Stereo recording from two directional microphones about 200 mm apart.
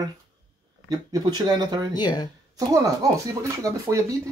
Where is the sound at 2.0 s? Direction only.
20° left (ahead or behind).